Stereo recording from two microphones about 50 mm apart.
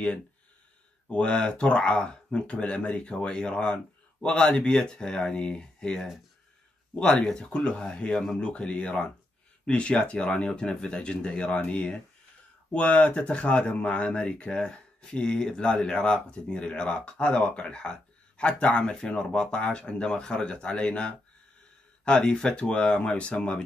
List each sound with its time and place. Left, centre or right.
1.1 s speech: left